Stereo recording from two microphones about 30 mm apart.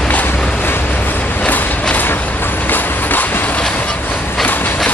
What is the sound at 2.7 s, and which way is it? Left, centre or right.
Train, left.